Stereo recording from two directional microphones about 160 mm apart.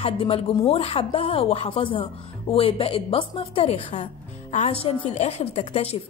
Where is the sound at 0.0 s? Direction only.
35° left (ahead or behind).